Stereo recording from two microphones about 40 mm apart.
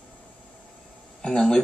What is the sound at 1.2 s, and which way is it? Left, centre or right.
Speech, left.